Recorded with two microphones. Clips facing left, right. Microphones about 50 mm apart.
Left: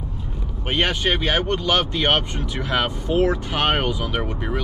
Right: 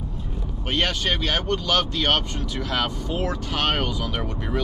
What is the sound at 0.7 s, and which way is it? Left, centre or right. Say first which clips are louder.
Speech: left 3 dB; centre.